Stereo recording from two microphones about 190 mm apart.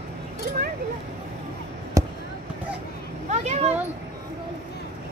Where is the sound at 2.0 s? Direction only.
15° right (ahead or behind).